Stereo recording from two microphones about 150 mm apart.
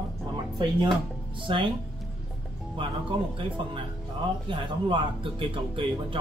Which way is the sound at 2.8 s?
35° right (ahead or behind).